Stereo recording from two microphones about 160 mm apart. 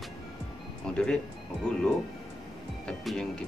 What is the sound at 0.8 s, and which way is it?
Music, 5° left (ahead or behind).